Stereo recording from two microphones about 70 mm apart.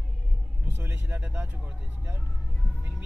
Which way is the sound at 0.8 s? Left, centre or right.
Right.